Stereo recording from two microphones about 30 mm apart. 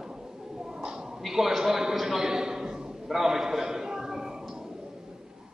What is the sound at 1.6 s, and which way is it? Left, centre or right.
A man's voice, centre.